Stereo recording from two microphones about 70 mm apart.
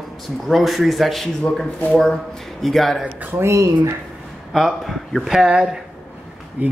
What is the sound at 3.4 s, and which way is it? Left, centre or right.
Speech, right.